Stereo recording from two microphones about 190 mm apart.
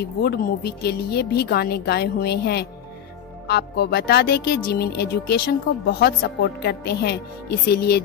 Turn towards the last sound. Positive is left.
turn(degrees=60)  # may be behind; listen again after turning